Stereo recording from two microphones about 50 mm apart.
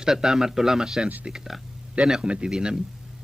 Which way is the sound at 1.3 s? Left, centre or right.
Centre.